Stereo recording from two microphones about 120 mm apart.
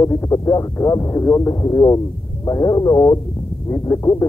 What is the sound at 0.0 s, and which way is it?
Speech, 30° left (ahead or behind).